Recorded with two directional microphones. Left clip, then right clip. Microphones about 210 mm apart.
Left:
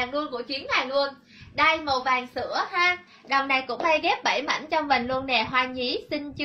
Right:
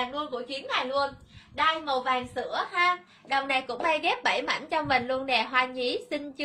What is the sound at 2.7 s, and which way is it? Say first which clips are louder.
A woman's voice: even; 15° right (ahead or behind).